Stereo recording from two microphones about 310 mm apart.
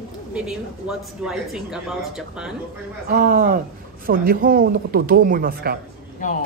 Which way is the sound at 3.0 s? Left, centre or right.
Right.